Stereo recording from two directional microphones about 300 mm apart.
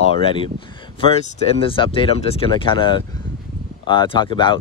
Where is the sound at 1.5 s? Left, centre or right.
Centre.